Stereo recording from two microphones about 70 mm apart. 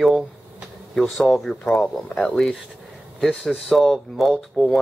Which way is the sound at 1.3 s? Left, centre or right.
Centre.